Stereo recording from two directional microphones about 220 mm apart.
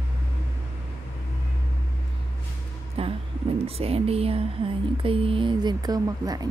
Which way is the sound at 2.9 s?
25° right (ahead or behind).